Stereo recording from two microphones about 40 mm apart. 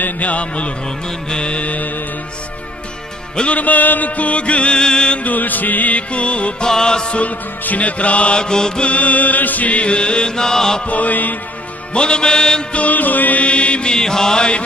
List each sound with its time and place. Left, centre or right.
0.0 s music: left
0.8 s music: centre; by 2.0 s left
3.5 s music: left
5.2 s music: left
6.7 s music: centre
7.2 s music: left
8.4 s chant: centre
8.9 s chant: left; by 10.8 s centre
10.9 s music: left
11.9 s chant: left
12.7 s music: left
13.9 s music: centre